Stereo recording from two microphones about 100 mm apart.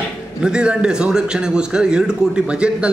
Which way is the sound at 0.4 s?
10° right (ahead or behind).